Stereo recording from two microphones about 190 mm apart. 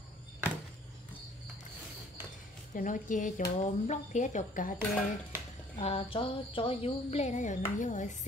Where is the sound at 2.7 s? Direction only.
45° left (ahead or behind).